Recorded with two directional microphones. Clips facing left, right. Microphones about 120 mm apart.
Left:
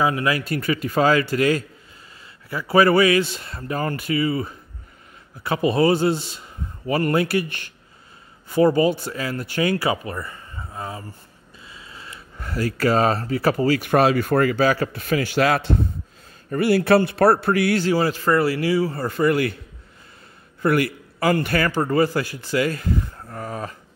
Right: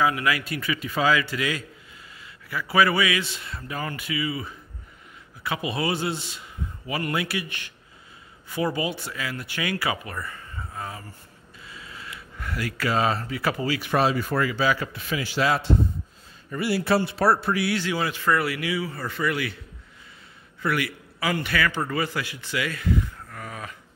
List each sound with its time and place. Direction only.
0.0 s a man's voice: 30° left (ahead or behind)
0.5 s a man's voice: 45° left (ahead or behind)
10.1 s a sound: 25° left (ahead or behind)
11.7 s a man's voice: 25° left (ahead or behind); by 19.5 s 45° left (ahead or behind)
20.6 s a man's voice: 45° left (ahead or behind)